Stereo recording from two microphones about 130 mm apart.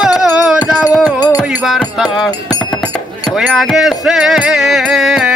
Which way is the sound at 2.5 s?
10° left (ahead or behind).